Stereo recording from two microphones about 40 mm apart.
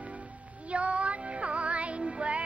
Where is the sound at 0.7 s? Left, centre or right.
Right.